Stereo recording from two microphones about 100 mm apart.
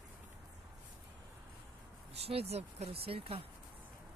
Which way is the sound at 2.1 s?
90° right.